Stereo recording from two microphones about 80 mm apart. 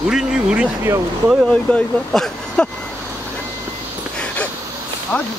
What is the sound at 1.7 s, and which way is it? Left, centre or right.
Speech, centre.